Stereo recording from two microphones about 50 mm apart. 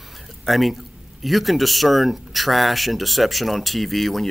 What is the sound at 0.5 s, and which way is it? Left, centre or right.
Speech, centre.